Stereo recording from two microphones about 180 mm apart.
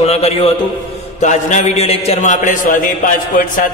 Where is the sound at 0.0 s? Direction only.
35° left (ahead or behind).